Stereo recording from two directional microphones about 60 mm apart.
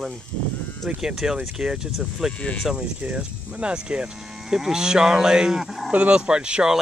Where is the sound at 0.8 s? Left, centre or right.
Centre.